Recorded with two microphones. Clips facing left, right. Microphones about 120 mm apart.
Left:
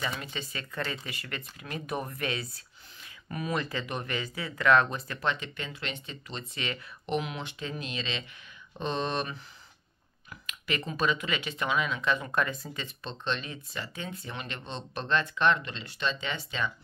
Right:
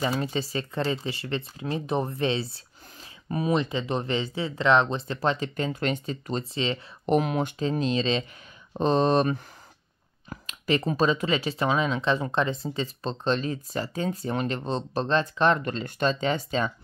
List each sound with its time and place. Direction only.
0.0 s speech: 35° right (ahead or behind)
7.1 s speech: 40° right (ahead or behind)